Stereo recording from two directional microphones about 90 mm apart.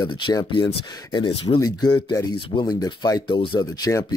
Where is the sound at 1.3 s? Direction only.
90° left.